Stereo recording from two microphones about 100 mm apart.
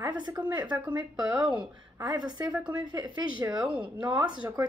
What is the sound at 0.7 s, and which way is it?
Speech, 15° right (ahead or behind).